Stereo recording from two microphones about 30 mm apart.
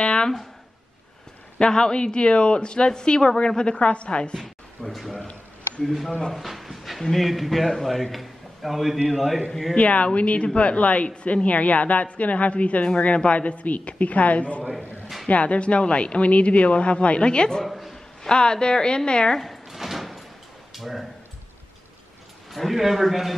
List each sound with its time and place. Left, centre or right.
0.0 s a sound: left
1.7 s a woman's voice: left
4.9 s a man's voice: centre
6.3 s a sound: centre
7.2 s a man's voice: centre
9.8 s speech: left
17.6 s a sound: centre
18.3 s a woman's voice: left
19.7 s sliding door: centre
20.7 s speech: centre
22.8 s a man's voice: centre